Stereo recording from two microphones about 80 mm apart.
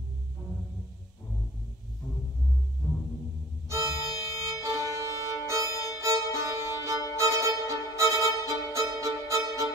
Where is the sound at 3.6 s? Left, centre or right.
Right.